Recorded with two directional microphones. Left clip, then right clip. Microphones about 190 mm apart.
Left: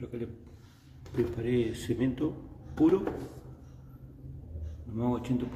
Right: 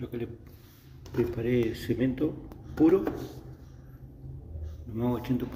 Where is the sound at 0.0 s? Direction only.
Centre (ahead or behind).